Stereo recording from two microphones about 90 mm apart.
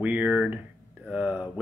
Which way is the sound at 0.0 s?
15° right (ahead or behind).